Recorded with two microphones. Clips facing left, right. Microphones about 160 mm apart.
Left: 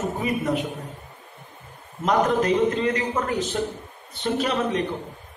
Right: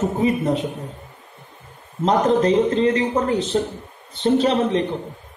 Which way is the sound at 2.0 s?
30° right (ahead or behind).